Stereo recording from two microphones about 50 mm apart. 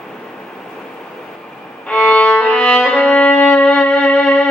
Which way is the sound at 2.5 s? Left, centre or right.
Centre.